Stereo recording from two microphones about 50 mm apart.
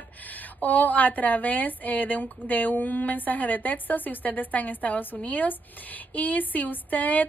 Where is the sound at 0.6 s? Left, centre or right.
Left.